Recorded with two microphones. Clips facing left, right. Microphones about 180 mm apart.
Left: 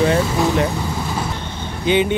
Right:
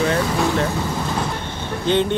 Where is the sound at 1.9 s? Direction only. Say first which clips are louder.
Left 2 dB; 10° left (ahead or behind).